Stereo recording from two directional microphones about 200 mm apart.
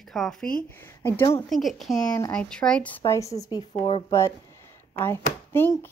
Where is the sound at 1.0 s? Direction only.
15° left (ahead or behind).